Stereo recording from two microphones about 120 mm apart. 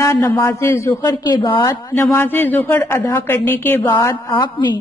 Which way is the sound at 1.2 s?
40° left (ahead or behind).